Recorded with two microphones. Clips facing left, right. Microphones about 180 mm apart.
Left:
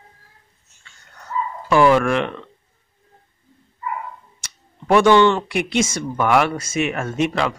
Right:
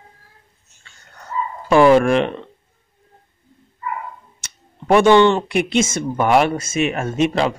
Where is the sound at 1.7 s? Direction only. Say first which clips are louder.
Right 3 dB; 25° right (ahead or behind).